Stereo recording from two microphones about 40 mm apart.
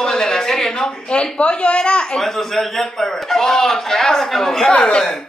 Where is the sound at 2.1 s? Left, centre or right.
Centre.